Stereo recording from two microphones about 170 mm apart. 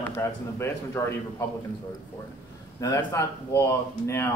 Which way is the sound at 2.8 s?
20° left (ahead or behind).